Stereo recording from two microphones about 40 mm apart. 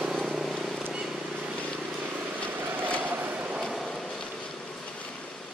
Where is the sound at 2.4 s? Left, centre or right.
Right.